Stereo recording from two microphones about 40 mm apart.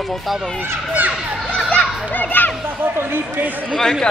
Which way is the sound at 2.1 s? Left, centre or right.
Left.